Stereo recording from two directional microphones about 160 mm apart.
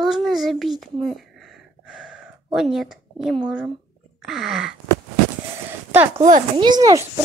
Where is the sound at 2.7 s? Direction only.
Centre (ahead or behind).